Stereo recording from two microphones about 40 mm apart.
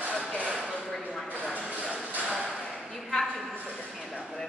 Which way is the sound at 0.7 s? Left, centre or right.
Centre.